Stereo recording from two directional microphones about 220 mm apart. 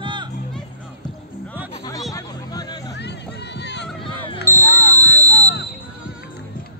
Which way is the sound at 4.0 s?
25° left (ahead or behind).